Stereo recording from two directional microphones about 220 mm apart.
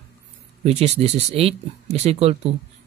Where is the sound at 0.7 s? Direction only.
30° right (ahead or behind).